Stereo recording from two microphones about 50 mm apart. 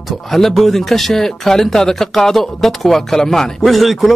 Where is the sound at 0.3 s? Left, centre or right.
Centre.